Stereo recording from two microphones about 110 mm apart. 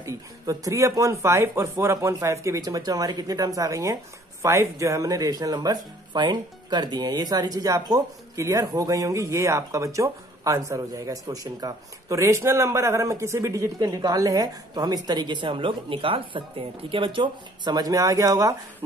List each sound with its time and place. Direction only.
0.0 s speech: 30° right (ahead or behind)